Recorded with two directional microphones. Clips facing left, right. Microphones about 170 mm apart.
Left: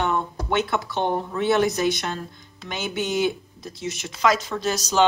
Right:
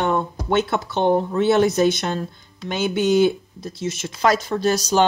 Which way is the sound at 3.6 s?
30° right (ahead or behind).